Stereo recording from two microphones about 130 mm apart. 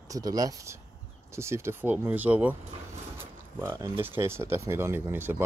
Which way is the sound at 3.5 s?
20° right (ahead or behind).